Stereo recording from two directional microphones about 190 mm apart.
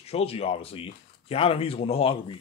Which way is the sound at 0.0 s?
30° left (ahead or behind).